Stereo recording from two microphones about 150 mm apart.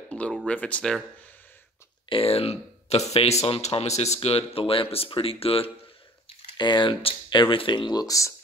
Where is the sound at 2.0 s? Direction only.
40° left (ahead or behind); by 8.4 s 20° left (ahead or behind).